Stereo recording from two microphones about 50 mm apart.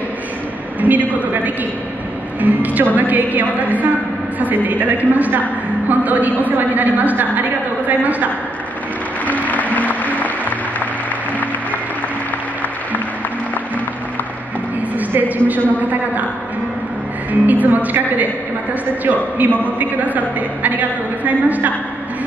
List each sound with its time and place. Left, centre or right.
0.7 s a woman's voice: right
9.2 s music: left
15.0 s a woman's voice: right
17.3 s a woman's voice: right